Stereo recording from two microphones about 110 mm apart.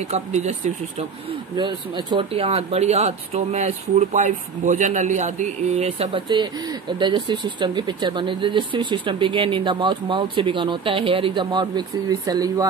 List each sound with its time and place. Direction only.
0.1 s speech: 90° right
1.6 s speech: 45° right (ahead or behind)
2.3 s speech: 60° right (ahead or behind); by 11.8 s 45° right (ahead or behind)
12.3 s speech: 35° right (ahead or behind)